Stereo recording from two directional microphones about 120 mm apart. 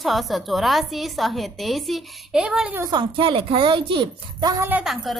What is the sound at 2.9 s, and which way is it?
A woman's voice, 40° right (ahead or behind).